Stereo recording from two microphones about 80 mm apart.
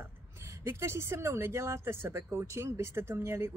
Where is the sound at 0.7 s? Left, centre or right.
Right.